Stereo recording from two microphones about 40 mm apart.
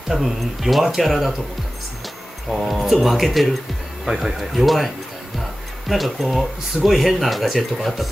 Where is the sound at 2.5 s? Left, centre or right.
Centre.